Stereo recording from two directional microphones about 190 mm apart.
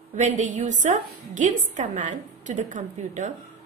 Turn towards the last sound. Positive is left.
turn(degrees=-40)  # may be behind; listen again after turning